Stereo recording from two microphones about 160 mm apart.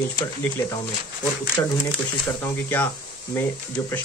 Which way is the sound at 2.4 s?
15° left (ahead or behind).